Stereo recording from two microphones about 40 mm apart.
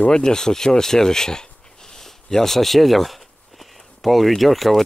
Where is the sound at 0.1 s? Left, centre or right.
Centre.